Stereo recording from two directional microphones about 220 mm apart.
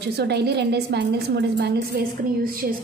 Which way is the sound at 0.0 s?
50° right (ahead or behind).